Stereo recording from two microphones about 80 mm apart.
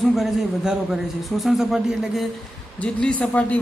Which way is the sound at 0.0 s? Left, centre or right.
Centre.